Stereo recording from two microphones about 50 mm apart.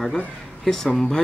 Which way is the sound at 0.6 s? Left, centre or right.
Centre.